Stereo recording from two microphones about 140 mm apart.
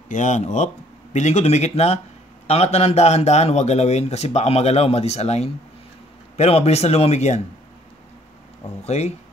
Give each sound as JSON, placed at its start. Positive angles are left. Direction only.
{"t": 0.1, "sound": "a man's voice", "side_deg": 60}
{"t": 8.8, "sound": "a man's voice", "side_deg": 50}